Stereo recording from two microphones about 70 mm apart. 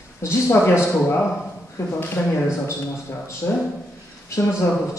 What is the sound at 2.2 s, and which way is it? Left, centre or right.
Speech, centre.